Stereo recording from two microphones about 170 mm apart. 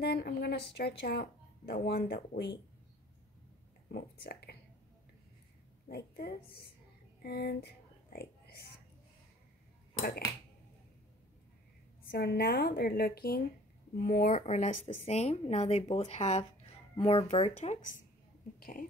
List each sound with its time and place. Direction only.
0.0 s a woman's voice: 70° left (ahead or behind)
3.9 s a woman's voice: 65° left (ahead or behind)
5.9 s a woman's voice: 65° left (ahead or behind)
7.2 s a sound: 70° left (ahead or behind)
12.1 s a woman's voice: 70° left (ahead or behind); by 17.8 s 45° left (ahead or behind)